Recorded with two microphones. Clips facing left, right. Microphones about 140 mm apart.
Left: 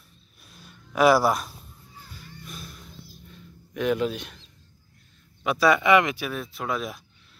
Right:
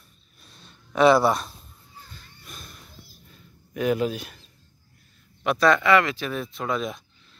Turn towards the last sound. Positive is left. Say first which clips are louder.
# right 2 dB
turn(degrees=5)  # may be behind; listen again after turning